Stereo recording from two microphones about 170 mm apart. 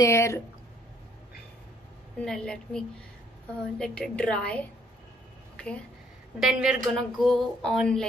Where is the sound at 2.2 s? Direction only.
5° left (ahead or behind).